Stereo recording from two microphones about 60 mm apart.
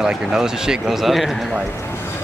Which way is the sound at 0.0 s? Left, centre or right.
Centre.